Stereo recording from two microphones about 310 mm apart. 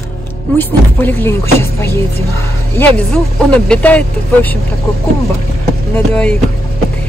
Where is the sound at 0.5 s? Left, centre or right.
Centre.